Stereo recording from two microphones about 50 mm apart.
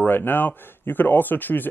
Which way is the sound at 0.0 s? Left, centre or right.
Left.